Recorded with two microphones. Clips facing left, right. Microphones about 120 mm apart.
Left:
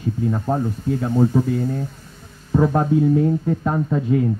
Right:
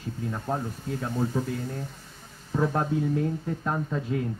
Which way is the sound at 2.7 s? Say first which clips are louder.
Left 9 dB; 20° left (ahead or behind).